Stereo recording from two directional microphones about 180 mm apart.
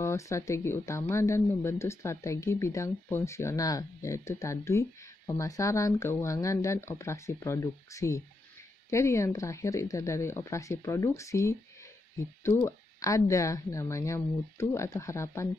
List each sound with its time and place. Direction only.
0.0 s speech: 15° left (ahead or behind)